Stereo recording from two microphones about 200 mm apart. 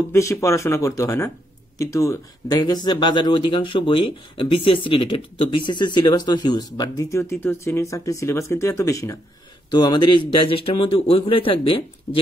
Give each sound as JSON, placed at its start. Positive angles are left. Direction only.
{"t": 0.1, "sound": "speech", "side_deg": 15}